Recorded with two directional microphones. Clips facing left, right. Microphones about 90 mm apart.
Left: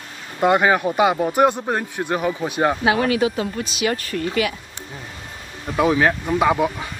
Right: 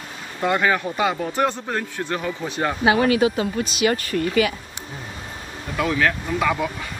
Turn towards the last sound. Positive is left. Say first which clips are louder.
# left 4 dB
turn(degrees=25)  # may be behind; listen again after turning